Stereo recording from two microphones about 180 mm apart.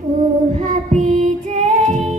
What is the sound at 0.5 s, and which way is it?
Child singing, 40° right (ahead or behind).